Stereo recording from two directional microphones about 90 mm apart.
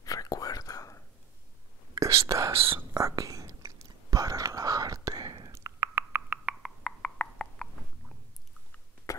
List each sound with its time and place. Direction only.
0.0 s whispering: 40° left (ahead or behind)
2.0 s whispering: 35° right (ahead or behind)
2.5 s speech: 90° right
2.9 s whispering: 40° right (ahead or behind); by 6.4 s 25° right (ahead or behind)
6.8 s a sound: 10° left (ahead or behind)